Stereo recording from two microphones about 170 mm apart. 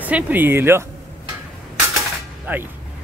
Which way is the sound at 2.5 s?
10° right (ahead or behind).